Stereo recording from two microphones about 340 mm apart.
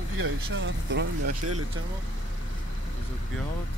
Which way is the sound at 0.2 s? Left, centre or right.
Right.